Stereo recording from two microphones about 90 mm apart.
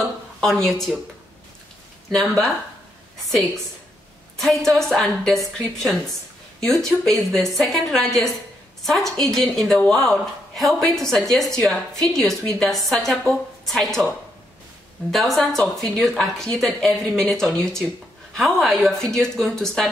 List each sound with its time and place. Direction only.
0.0 s a sound: 5° left (ahead or behind)
2.0 s a woman's voice: centre (ahead or behind)
4.4 s a woman's voice: 5° left (ahead or behind)